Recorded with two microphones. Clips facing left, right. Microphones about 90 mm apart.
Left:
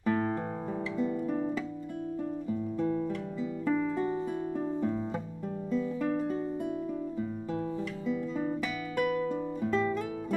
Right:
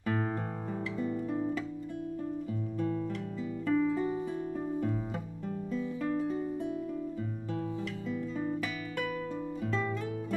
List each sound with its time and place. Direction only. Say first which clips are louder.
0.1 s music: left 3 dB; centre (ahead or behind)
2.8 s guitar: left 2 dB; 15° left (ahead or behind)
3.6 s music: right 1 dB; 10° left (ahead or behind)
8.1 s music: left 3 dB; 5° left (ahead or behind)